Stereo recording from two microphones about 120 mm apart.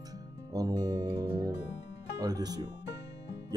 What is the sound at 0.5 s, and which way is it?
Music, 30° right (ahead or behind).